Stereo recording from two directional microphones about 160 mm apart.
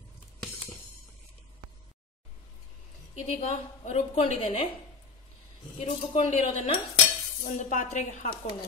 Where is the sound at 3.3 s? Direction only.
45° left (ahead or behind).